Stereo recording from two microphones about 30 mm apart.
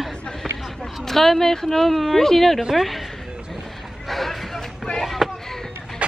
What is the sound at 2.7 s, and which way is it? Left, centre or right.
Speech, centre.